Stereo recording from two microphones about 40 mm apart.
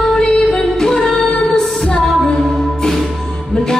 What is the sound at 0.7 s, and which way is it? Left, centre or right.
Music, centre.